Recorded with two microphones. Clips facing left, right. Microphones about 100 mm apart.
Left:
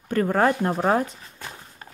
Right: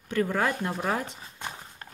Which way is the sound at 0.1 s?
45° left (ahead or behind).